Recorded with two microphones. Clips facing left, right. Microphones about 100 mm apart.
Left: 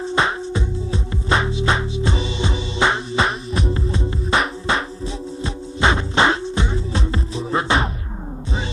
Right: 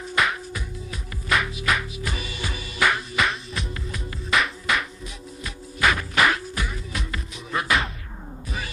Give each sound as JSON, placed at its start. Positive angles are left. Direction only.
{"t": 0.0, "sound": "music", "side_deg": 30}